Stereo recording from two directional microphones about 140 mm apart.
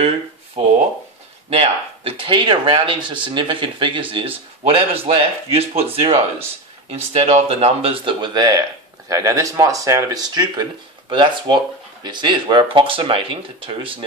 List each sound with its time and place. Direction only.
1.5 s speech: 45° right (ahead or behind)